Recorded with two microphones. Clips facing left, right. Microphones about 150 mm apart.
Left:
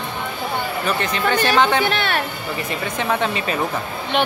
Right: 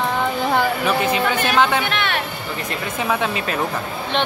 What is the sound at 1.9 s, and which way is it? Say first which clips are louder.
Speech: left 2 dB; 40° left (ahead or behind).